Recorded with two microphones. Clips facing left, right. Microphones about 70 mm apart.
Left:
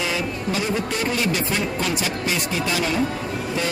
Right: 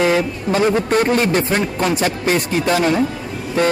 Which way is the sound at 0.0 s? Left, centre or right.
Right.